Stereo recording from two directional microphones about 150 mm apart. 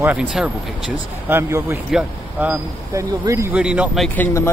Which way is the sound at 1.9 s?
5° right (ahead or behind).